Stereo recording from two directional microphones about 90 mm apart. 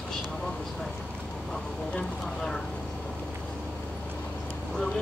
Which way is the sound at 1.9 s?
5° left (ahead or behind).